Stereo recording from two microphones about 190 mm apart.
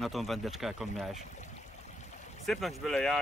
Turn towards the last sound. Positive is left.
turn(degrees=0)  # may be behind; listen again after turning